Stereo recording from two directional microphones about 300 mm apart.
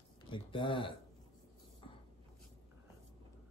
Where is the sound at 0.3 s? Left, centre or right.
Centre.